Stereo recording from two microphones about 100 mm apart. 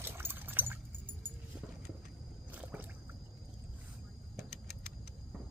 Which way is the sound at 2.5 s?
15° right (ahead or behind).